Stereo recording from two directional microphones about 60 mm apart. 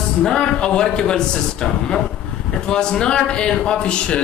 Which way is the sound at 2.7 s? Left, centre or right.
Centre.